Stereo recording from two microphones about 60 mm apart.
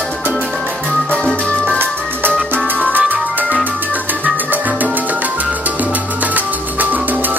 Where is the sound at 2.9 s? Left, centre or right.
Right.